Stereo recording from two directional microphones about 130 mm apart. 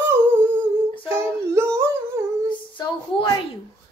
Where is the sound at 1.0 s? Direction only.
20° right (ahead or behind).